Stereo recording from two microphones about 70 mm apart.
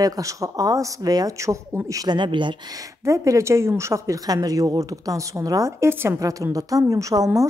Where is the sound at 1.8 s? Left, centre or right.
Right.